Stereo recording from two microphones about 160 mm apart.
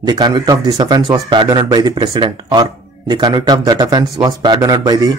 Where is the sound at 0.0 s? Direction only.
25° right (ahead or behind).